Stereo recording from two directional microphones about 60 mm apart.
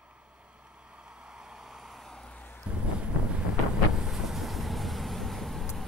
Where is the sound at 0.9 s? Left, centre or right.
Centre.